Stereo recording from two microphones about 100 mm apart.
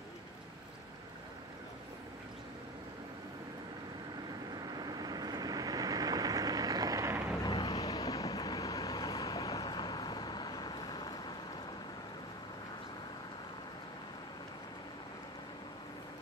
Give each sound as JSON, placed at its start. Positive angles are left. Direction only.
{"t": 4.7, "sound": "vehicle", "side_deg": -40}
{"t": 7.6, "sound": "vehicle", "side_deg": 35}